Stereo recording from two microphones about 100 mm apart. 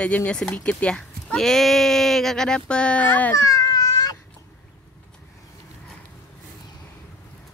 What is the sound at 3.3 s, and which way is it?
Baby cry, 35° left (ahead or behind).